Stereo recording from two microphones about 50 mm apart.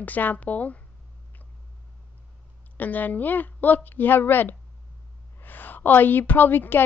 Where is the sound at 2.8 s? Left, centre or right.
Left.